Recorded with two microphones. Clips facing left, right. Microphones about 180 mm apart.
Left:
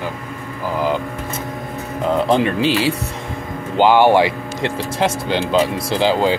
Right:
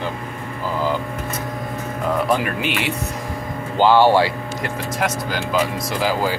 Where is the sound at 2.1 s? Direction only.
25° left (ahead or behind).